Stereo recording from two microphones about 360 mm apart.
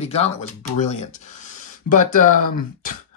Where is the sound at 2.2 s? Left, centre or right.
Left.